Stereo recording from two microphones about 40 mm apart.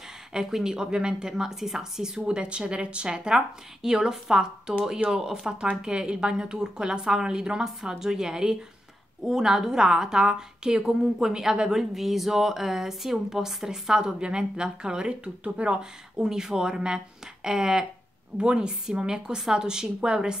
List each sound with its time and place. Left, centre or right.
0.3 s speech: centre
2.2 s a woman's voice: right
11.9 s speech: centre
18.4 s a woman's voice: right